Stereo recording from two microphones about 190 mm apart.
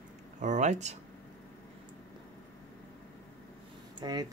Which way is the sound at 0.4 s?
40° right (ahead or behind).